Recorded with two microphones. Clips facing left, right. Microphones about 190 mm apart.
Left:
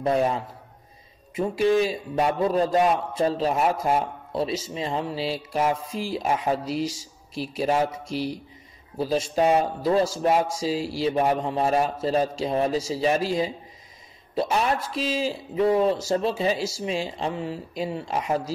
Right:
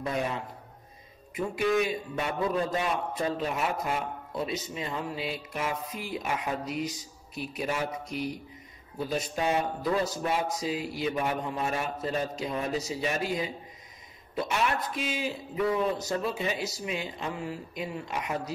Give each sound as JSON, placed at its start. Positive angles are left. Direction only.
{"t": 0.0, "sound": "speech", "side_deg": 35}
{"t": 1.4, "sound": "speech", "side_deg": 30}
{"t": 10.5, "sound": "speech", "side_deg": 30}